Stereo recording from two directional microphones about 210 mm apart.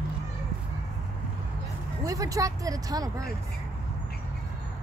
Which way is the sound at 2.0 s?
15° right (ahead or behind).